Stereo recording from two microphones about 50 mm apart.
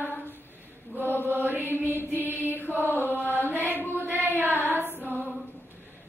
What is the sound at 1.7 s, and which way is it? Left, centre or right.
Mantra, left.